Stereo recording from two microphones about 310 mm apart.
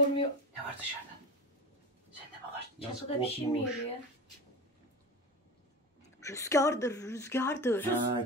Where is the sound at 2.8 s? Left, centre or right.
Centre.